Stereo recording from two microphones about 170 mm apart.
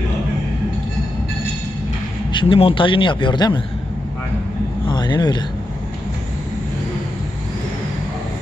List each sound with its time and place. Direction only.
2.3 s a man's voice: 30° left (ahead or behind)
4.8 s speech: 25° left (ahead or behind)